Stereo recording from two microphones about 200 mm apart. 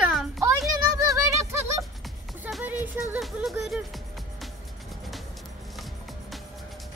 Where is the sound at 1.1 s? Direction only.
15° right (ahead or behind).